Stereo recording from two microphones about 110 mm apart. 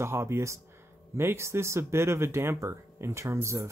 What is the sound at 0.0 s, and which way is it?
Speech, 25° right (ahead or behind).